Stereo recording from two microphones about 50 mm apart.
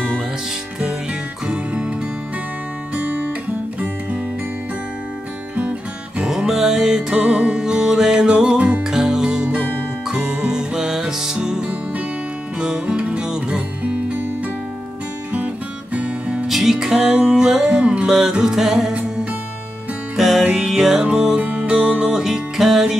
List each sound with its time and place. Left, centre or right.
1.5 s music: right
5.6 s music: right
6.2 s music: centre
8.8 s music: centre
15.3 s music: right
16.4 s music: centre; by 18.0 s right
18.0 s music: centre
20.2 s music: centre
21.4 s music: right
21.6 s music: centre